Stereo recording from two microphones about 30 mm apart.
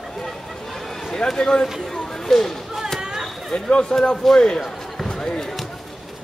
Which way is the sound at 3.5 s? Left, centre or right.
Left.